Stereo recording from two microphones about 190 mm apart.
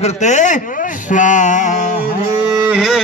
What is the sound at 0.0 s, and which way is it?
Speech, 40° left (ahead or behind).